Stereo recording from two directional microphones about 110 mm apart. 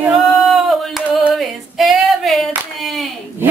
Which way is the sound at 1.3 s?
Centre (ahead or behind).